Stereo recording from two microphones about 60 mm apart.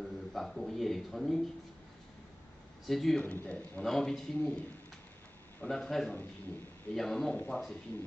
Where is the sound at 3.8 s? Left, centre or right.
Centre.